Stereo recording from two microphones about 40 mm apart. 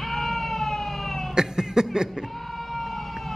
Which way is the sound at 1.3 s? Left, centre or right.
Centre.